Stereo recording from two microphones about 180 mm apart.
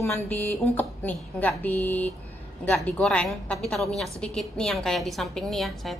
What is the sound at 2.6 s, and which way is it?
A woman's voice, 10° left (ahead or behind).